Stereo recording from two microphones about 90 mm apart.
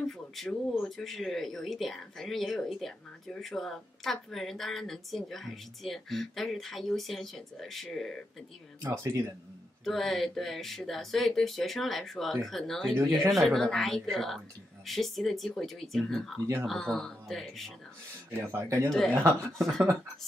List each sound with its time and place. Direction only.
0.4 s speech: centre (ahead or behind)
8.9 s speech: 35° right (ahead or behind)
9.8 s speech: 5° left (ahead or behind)
12.9 s speech: 35° right (ahead or behind)
13.3 s speech: centre (ahead or behind)
18.3 s speech: 30° right (ahead or behind)
18.9 s speech: 5° left (ahead or behind)
19.1 s speech: 30° right (ahead or behind)